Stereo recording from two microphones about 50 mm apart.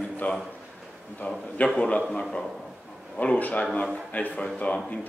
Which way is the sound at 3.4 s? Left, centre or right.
Left.